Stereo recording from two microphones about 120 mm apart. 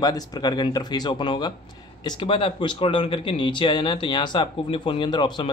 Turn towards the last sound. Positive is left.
turn(degrees=40)  # may be behind; listen again after turning